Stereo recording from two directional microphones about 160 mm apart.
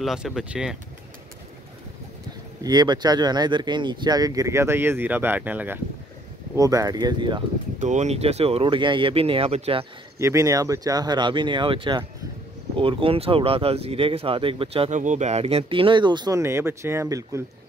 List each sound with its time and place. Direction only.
0.0 s speech: centre (ahead or behind)
2.6 s speech: 25° right (ahead or behind)
7.8 s speech: 45° right (ahead or behind)
10.1 s speech: 20° right (ahead or behind)